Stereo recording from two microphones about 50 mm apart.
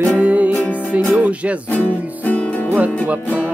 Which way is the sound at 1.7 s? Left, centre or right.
Left.